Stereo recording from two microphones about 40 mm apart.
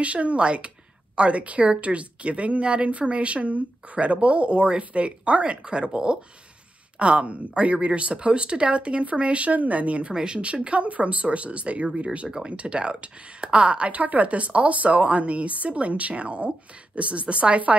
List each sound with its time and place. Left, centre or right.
0.0 s speech: right
10.1 s speech: right